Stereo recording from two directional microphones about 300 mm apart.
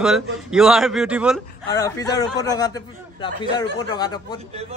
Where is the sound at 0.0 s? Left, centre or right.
Centre.